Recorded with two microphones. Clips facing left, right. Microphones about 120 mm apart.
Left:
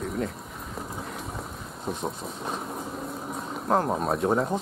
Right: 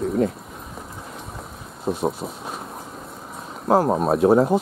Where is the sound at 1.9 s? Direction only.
5° right (ahead or behind).